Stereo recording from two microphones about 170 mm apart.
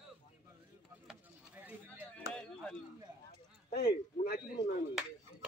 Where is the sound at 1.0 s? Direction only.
10° right (ahead or behind).